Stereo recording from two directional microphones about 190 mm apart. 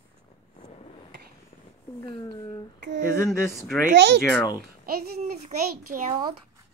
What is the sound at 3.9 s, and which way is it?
Speech, 65° right (ahead or behind).